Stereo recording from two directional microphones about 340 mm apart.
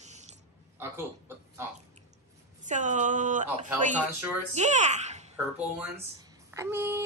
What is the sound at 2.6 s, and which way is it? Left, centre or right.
Speech, right.